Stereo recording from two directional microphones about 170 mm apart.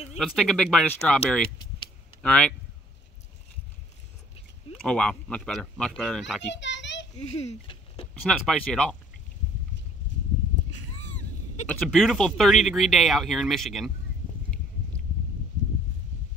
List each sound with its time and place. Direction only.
0.2 s speech: 5° left (ahead or behind)
4.8 s speech: 5° left (ahead or behind)
6.5 s a sound: 90° left
7.2 s a child's voice: 40° left (ahead or behind)
8.1 s speech: 5° left (ahead or behind)
11.6 s speech: 5° left (ahead or behind)